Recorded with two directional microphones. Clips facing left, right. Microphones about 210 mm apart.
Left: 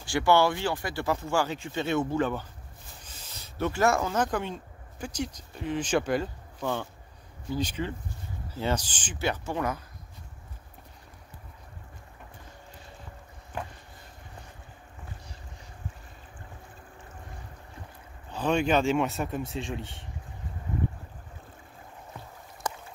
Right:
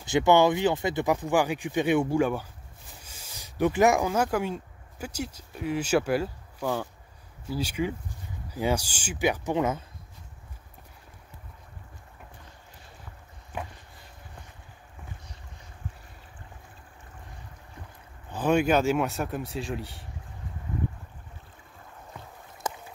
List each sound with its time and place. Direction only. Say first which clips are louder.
0.0 s speech: right 3 dB; 20° right (ahead or behind)
13.5 s a sound: even; 5° right (ahead or behind)
18.3 s speech: right 2 dB; 10° right (ahead or behind)